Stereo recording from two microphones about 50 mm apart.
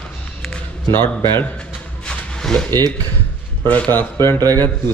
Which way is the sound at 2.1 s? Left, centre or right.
Centre.